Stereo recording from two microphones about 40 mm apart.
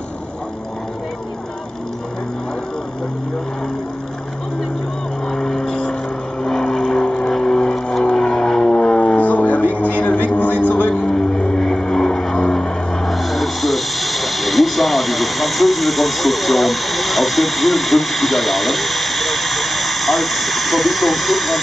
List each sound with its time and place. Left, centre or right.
5.3 s vehicle: centre
5.6 s a sound: left
6.4 s vehicle: centre
8.8 s music: centre
9.1 s music: left
11.1 s vehicle: centre
13.1 s a sound: centre